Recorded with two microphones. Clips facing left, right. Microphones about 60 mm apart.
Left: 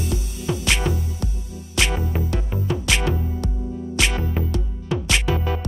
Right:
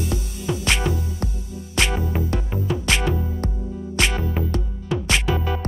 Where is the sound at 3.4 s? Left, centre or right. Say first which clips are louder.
Right 1 dB; right.